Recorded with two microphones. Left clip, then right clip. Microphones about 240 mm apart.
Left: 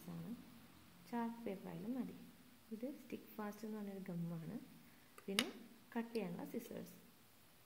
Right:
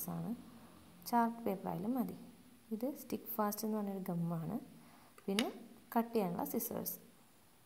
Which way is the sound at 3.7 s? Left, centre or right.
Centre.